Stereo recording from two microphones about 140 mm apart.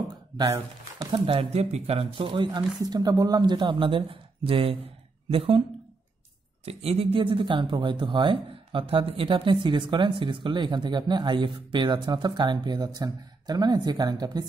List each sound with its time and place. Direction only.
1.1 s speech: 40° right (ahead or behind)
6.6 s speech: 45° right (ahead or behind); by 14.4 s 30° right (ahead or behind)